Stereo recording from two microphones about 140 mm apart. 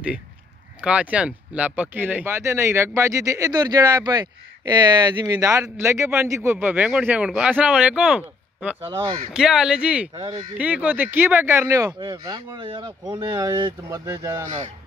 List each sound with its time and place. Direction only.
0.7 s speech: 10° right (ahead or behind)
10.1 s speech: 35° right (ahead or behind)
10.6 s speech: 10° right (ahead or behind)
11.9 s speech: 30° right (ahead or behind)